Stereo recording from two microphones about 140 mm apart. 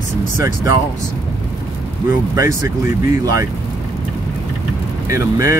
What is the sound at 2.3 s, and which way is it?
Speech, 20° right (ahead or behind).